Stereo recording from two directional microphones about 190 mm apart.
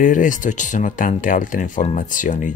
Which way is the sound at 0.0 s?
45° left (ahead or behind).